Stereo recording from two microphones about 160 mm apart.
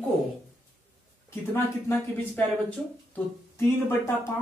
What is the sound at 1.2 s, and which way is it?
Speech, 15° left (ahead or behind).